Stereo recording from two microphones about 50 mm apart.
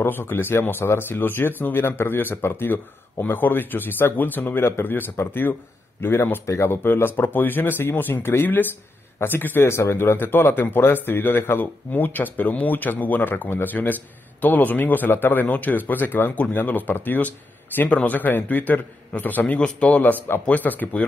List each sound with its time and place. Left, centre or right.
0.0 s speech: left
4.6 s speech: left
6.4 s speech: left
9.6 s speech: left
20.0 s speech: left